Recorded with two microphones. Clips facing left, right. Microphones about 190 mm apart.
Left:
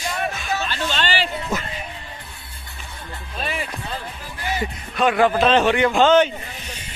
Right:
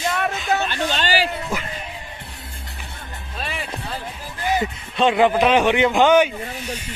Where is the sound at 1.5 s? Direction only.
10° right (ahead or behind).